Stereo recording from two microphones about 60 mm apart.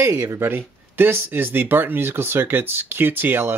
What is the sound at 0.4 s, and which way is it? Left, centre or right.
Speech, right.